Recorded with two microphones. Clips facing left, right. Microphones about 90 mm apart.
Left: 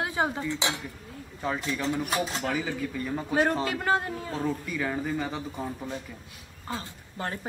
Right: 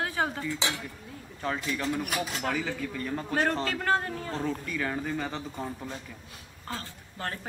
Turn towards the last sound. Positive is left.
turn(degrees=20)  # may be behind; listen again after turning